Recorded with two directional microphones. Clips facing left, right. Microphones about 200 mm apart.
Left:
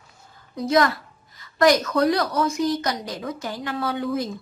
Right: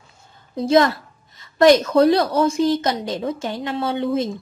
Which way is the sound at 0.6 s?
25° right (ahead or behind).